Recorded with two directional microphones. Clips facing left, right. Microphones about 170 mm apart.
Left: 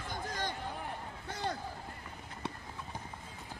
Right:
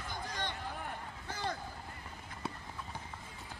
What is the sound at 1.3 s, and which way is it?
Run, 35° left (ahead or behind).